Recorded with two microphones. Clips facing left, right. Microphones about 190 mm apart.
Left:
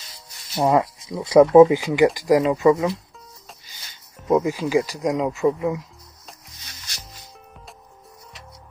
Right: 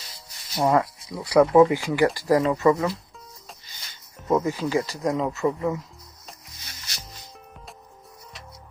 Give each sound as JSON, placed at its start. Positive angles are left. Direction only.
{"t": 0.6, "sound": "speech", "side_deg": 15}
{"t": 4.3, "sound": "speech", "side_deg": 15}